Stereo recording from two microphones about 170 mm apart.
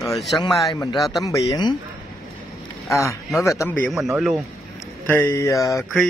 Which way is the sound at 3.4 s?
15° left (ahead or behind).